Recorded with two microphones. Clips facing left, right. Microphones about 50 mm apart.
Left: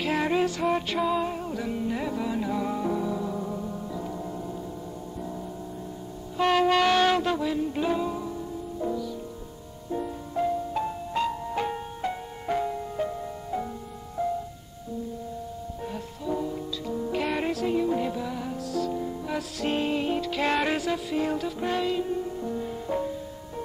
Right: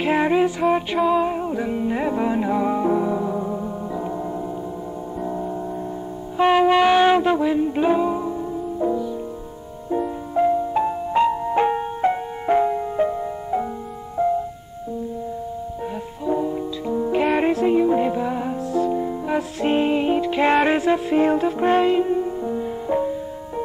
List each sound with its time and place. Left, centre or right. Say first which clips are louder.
0.0 s music: right 7 dB; right
0.9 s music: right 7 dB; centre
1.2 s music: right 7 dB; right
6.3 s music: right 6 dB; centre
16.3 s music: right 7 dB; right